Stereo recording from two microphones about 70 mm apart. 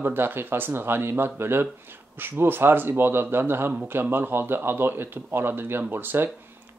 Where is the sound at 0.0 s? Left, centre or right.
Right.